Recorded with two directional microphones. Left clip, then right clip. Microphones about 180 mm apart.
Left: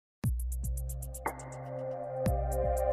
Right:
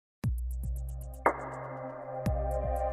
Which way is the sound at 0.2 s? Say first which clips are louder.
Even; centre (ahead or behind).